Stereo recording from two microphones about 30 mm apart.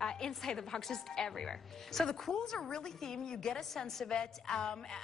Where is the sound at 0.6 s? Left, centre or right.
Centre.